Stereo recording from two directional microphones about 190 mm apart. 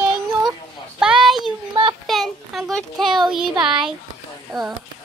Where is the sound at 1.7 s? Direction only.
30° right (ahead or behind).